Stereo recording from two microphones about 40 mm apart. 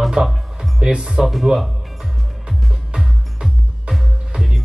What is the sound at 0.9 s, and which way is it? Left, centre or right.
Speech, centre.